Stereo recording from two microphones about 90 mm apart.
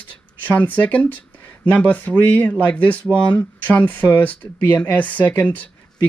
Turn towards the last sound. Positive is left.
turn(degrees=15)  # may be behind; listen again after turning